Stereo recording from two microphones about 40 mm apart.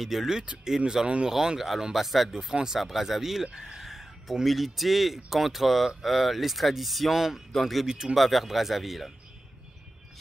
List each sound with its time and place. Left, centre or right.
0.0 s speech: centre
0.7 s speech: centre
2.5 s speech: centre
3.9 s a sound: centre
4.5 s speech: centre
7.8 s speech: centre
8.2 s speech: centre